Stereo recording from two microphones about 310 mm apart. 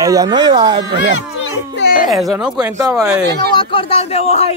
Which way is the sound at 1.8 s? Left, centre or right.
Left.